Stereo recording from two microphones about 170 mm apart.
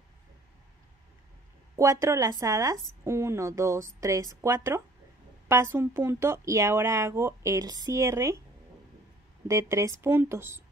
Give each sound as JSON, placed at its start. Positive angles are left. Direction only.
{"t": 1.8, "sound": "speech", "side_deg": -15}
{"t": 9.5, "sound": "speech", "side_deg": -15}